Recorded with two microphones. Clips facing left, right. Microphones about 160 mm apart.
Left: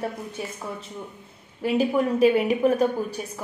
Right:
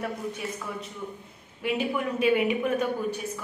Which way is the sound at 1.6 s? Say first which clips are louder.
Left 6 dB; 35° left (ahead or behind).